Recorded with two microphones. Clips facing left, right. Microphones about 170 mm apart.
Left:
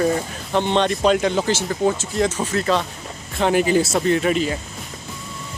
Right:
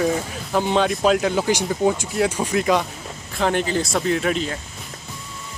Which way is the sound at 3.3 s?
Centre (ahead or behind).